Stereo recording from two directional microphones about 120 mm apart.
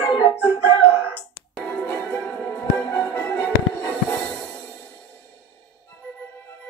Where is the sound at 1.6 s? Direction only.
15° left (ahead or behind).